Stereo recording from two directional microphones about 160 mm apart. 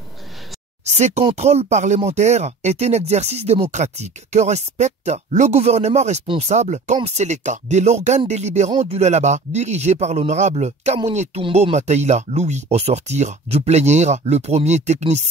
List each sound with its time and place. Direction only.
0.9 s speech: 45° right (ahead or behind)